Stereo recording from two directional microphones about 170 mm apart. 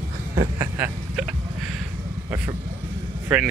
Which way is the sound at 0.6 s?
10° right (ahead or behind).